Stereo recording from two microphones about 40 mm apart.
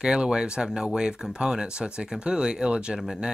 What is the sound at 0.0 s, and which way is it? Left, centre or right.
Speech, centre.